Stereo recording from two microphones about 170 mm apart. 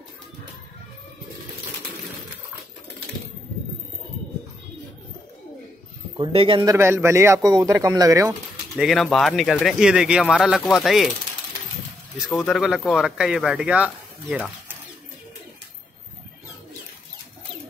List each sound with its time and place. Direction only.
6.1 s a man's voice: 30° right (ahead or behind)
8.7 s speech: centre (ahead or behind)
12.2 s speech: centre (ahead or behind)